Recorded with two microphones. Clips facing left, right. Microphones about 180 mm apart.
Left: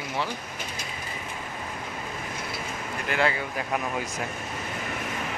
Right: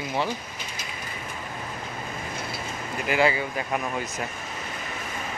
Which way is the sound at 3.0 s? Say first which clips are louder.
Right 3 dB; 5° right (ahead or behind).